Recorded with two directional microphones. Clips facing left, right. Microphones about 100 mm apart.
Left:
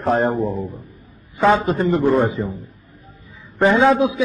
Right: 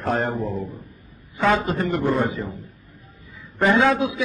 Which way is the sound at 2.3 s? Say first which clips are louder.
Left 5 dB; centre (ahead or behind).